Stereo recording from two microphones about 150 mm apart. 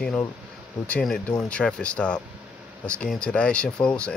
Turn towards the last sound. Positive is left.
turn(degrees=5)  # may be behind; listen again after turning